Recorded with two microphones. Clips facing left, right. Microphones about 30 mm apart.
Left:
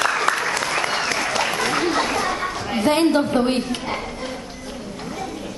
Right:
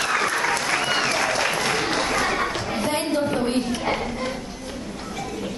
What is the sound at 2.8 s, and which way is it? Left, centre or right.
Speech, left.